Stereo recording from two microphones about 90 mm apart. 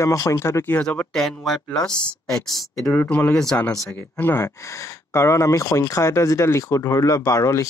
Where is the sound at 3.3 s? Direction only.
5° left (ahead or behind).